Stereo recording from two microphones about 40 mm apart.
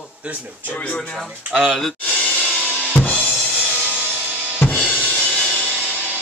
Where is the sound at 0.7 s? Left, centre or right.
Left.